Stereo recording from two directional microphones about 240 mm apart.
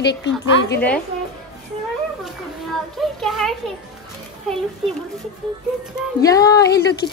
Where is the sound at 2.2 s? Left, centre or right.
Centre.